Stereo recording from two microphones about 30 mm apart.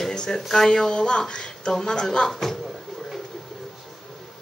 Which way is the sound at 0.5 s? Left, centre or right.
Centre.